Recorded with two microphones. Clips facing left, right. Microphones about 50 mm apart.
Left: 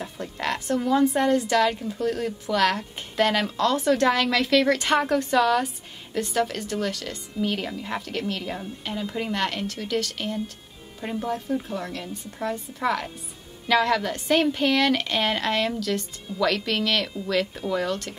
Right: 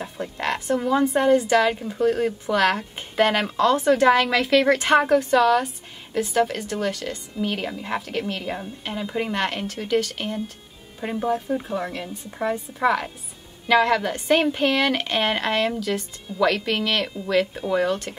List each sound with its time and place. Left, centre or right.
0.0 s a woman's voice: centre